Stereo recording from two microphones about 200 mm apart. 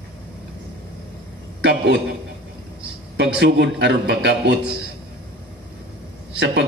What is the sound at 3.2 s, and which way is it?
A man's voice, 55° right (ahead or behind).